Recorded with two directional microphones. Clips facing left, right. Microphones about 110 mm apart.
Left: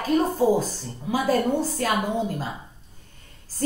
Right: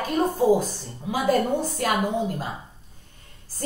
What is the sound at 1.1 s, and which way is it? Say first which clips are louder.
Speech: even; 20° right (ahead or behind).